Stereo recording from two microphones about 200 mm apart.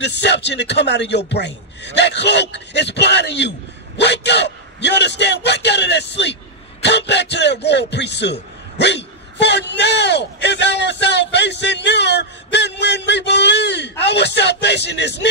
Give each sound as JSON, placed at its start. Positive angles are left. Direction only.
{"t": 0.0, "sound": "a man's voice", "side_deg": 60}